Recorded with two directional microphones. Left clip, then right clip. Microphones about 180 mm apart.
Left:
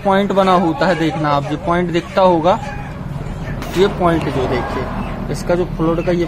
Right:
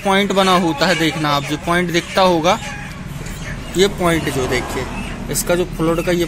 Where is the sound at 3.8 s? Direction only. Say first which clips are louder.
Left 1 dB; 30° right (ahead or behind).